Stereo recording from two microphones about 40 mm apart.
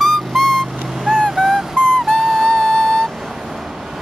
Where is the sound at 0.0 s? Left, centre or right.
Centre.